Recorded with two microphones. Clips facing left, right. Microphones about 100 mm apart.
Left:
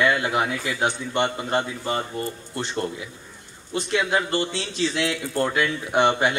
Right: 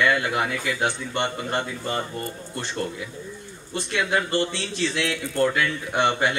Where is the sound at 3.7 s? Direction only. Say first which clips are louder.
Left 2 dB; 15° left (ahead or behind).